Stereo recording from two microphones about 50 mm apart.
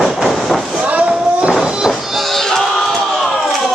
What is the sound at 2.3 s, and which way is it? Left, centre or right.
Music, centre.